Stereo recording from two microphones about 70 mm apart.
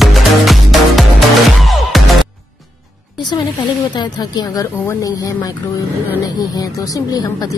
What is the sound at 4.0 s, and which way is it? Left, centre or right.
Speech, left.